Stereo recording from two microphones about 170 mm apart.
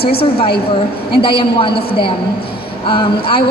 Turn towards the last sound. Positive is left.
turn(degrees=30)  # may be behind; listen again after turning